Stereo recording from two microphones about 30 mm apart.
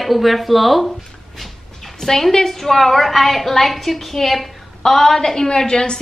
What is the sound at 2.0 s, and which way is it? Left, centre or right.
A woman's voice, centre.